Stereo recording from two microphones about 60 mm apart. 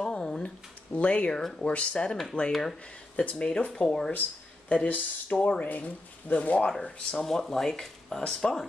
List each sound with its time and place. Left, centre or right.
0.0 s a sound: centre
0.9 s speech: left
1.3 s speech: centre
1.7 s speech: centre
2.5 s speech: centre
3.2 s speech: centre
6.8 s speech: centre